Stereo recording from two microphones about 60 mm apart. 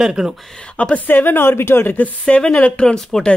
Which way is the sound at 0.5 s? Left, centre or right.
Centre.